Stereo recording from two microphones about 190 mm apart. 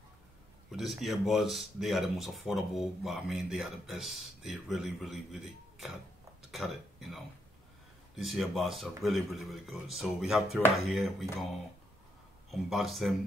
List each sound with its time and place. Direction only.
0.7 s speech: centre (ahead or behind)
12.4 s speech: centre (ahead or behind)